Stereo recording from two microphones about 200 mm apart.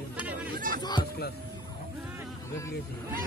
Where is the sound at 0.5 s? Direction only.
45° right (ahead or behind).